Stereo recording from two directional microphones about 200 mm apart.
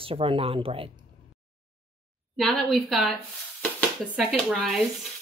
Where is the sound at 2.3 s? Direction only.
Centre (ahead or behind).